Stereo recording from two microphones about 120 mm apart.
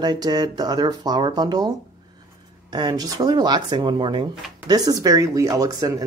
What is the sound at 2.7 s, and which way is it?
Speech, 35° right (ahead or behind).